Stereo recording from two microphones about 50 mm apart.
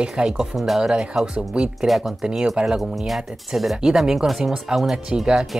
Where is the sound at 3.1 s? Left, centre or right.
Centre.